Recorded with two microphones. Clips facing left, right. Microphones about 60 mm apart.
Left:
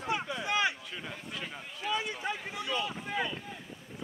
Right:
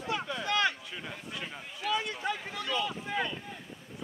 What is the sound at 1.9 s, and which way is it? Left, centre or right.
Boat, centre.